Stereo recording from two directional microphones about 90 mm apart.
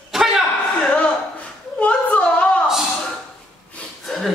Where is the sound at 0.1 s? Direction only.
5° right (ahead or behind).